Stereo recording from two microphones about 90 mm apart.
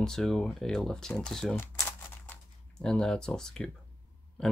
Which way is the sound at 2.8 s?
5° left (ahead or behind).